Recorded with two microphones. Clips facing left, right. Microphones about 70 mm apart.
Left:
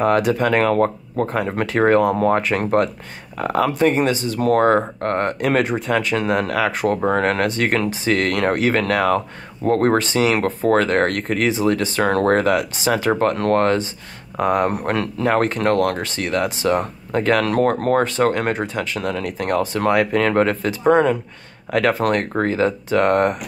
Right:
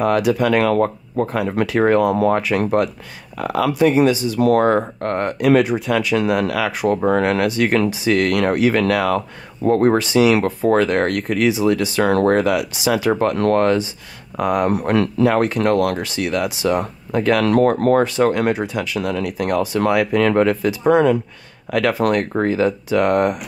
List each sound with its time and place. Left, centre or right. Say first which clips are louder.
0.0 s speech: even; left